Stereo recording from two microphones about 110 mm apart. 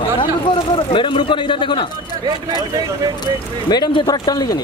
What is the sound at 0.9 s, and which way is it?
Speech, 50° left (ahead or behind).